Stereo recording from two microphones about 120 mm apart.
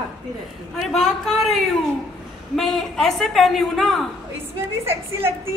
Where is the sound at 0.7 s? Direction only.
Centre (ahead or behind).